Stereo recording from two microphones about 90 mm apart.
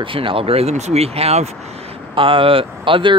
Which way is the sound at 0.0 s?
75° right (ahead or behind).